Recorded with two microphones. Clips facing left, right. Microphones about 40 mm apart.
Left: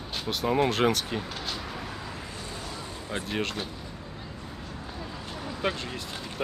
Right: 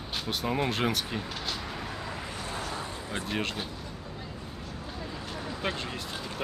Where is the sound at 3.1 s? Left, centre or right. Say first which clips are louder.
Left 2 dB; centre.